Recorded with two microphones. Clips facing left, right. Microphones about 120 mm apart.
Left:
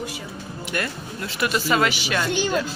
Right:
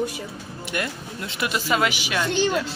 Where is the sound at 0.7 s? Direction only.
15° right (ahead or behind).